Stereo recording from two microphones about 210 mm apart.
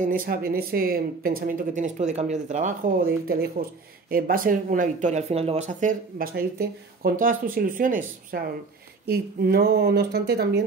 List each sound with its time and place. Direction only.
0.0 s speech: 40° right (ahead or behind)